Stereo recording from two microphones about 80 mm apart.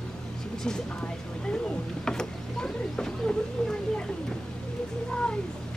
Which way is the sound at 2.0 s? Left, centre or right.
Centre.